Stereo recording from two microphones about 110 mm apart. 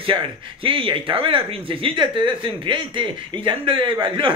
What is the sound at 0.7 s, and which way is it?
Speech, 50° right (ahead or behind).